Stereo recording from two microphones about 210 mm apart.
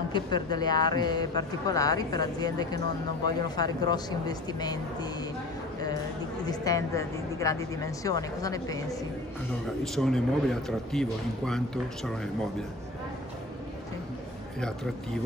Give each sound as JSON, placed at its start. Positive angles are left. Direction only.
{"t": 0.1, "sound": "speech", "side_deg": 20}
{"t": 6.4, "sound": "a woman's voice", "side_deg": 15}
{"t": 9.9, "sound": "a man's voice", "side_deg": 0}